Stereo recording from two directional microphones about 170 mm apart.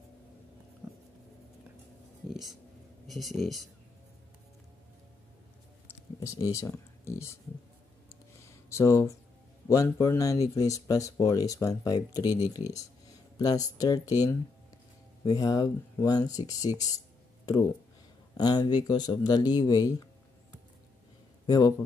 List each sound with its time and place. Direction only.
2.2 s speech: centre (ahead or behind)
6.1 s speech: 20° left (ahead or behind)
8.5 s speech: 15° left (ahead or behind)
18.3 s speech: 25° left (ahead or behind)
21.5 s speech: 20° left (ahead or behind)